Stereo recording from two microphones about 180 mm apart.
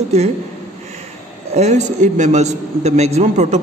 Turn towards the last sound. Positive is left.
turn(degrees=-40)  # may be behind; listen again after turning